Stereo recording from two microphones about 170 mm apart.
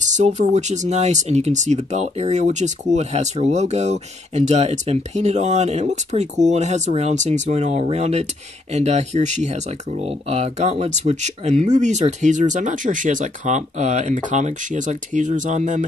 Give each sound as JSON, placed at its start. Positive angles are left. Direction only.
{"t": 0.0, "sound": "speech", "side_deg": -45}